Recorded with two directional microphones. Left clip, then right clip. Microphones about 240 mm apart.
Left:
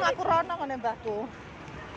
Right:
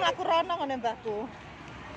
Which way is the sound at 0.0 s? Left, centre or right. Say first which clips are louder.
Left 1 dB; centre.